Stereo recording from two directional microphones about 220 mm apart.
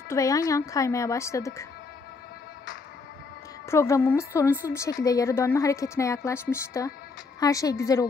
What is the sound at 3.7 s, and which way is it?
A woman's voice, 10° left (ahead or behind).